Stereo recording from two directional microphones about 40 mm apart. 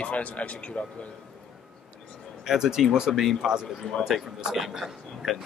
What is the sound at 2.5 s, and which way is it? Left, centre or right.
Speech, centre.